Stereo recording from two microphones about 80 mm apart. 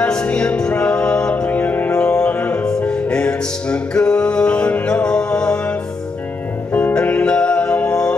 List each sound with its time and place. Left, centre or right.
0.0 s music: centre
6.7 s music: centre